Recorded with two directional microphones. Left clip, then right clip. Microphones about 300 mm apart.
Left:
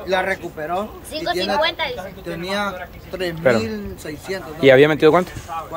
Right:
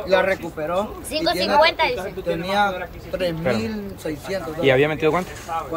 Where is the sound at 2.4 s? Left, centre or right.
Centre.